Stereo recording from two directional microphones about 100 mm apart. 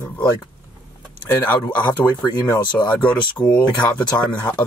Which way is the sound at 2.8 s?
15° left (ahead or behind).